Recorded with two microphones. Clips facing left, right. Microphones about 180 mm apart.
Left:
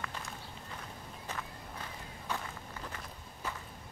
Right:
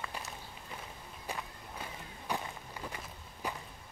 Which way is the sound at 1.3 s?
15° right (ahead or behind).